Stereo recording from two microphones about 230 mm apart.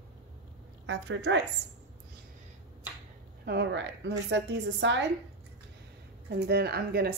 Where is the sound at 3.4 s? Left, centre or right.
Right.